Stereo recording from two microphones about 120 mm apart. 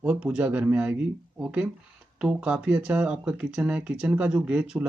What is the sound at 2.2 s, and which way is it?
Speech, 10° right (ahead or behind).